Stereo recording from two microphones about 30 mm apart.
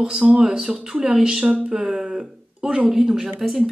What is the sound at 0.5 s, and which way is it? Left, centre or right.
A woman's voice, right.